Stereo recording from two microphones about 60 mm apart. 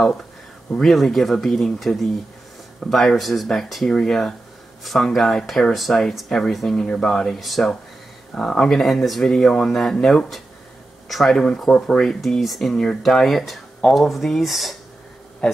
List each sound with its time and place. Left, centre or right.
0.7 s speech: centre
8.4 s speech: centre
12.2 s speech: centre
15.4 s speech: centre